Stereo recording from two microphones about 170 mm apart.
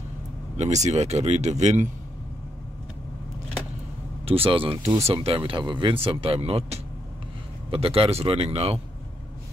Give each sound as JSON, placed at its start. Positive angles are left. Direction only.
{"t": 0.6, "sound": "speech", "side_deg": -40}
{"t": 4.3, "sound": "speech", "side_deg": -30}